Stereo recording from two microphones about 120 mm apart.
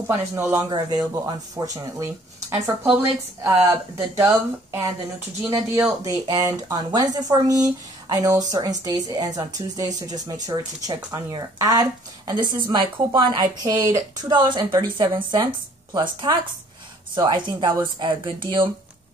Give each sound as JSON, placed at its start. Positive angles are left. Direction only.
{"t": 0.0, "sound": "speech", "side_deg": -25}
{"t": 0.7, "sound": "speech", "side_deg": -35}
{"t": 4.2, "sound": "speech", "side_deg": -25}
{"t": 14.3, "sound": "speech", "side_deg": -40}